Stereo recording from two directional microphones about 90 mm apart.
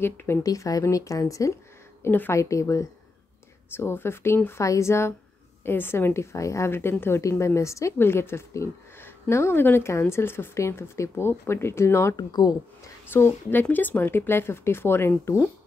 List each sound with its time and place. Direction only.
0.0 s a woman's voice: 25° left (ahead or behind)
0.4 s speech: 40° left (ahead or behind)
2.0 s a woman's voice: 25° left (ahead or behind)
12.2 s speech: 50° left (ahead or behind)
13.0 s a woman's voice: 25° left (ahead or behind)